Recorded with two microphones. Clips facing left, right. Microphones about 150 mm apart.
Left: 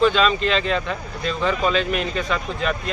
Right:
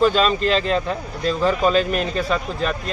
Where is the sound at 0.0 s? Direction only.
40° right (ahead or behind).